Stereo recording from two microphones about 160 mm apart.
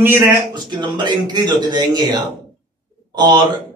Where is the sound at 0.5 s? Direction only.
30° right (ahead or behind).